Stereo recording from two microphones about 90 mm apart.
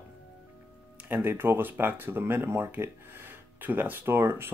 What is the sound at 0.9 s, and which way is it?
Speech, 20° right (ahead or behind).